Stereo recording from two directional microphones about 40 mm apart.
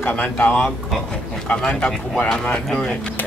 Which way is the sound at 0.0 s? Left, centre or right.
Left.